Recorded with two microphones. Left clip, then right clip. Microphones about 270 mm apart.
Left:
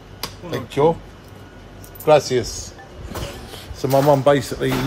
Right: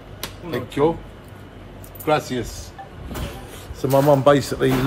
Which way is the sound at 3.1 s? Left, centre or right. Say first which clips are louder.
Left 2 dB; left.